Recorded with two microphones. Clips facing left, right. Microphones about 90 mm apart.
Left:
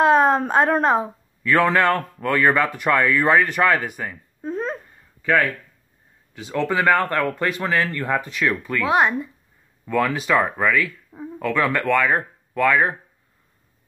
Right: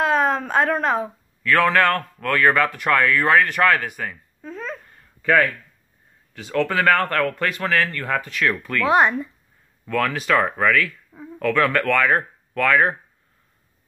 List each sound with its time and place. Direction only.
0.0 s a woman's voice: 30° left (ahead or behind)
4.5 s babbling: 35° left (ahead or behind)
4.8 s a sound: 10° left (ahead or behind)
6.3 s speech: 15° left (ahead or behind)